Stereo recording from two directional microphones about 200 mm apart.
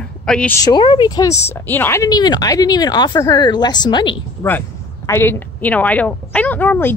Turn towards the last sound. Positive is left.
turn(degrees=10)  # may be behind; listen again after turning